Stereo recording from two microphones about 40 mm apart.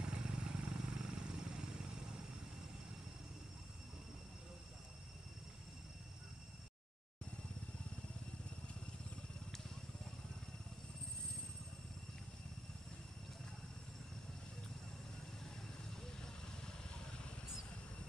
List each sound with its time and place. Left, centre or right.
0.0 s vehicle: right